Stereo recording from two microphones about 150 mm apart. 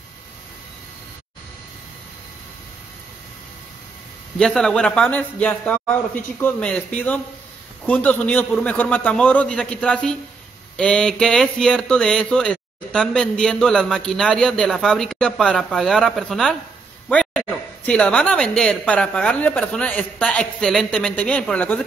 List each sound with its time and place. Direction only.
4.4 s a woman's voice: 5° left (ahead or behind)